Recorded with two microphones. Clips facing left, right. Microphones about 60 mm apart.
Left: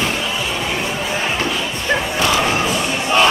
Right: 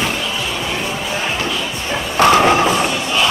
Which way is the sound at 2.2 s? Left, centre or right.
Right.